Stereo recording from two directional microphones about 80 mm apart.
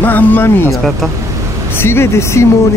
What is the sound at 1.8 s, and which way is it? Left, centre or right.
Speech, left.